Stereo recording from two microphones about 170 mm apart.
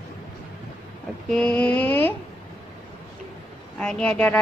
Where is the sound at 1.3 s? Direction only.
5° left (ahead or behind).